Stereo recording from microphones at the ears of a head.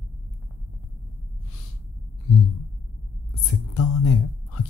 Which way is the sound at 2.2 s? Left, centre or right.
Left.